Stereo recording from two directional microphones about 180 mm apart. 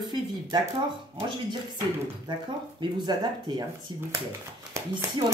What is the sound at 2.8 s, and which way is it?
Speech, 25° right (ahead or behind).